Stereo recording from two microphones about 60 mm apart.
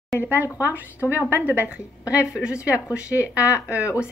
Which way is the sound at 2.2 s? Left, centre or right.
Centre.